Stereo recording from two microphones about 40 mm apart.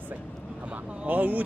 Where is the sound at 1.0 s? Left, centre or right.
Right.